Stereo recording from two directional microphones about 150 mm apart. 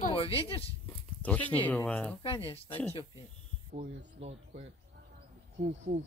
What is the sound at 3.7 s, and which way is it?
Speech, 45° right (ahead or behind).